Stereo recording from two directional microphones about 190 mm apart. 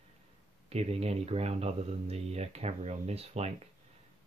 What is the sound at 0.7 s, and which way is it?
Speech, 30° right (ahead or behind).